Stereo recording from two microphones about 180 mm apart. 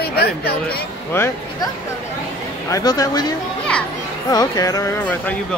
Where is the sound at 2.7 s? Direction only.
20° left (ahead or behind).